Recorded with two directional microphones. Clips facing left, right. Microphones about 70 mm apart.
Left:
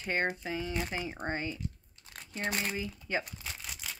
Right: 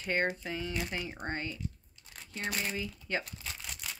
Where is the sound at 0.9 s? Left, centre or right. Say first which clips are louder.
Left 2 dB; centre.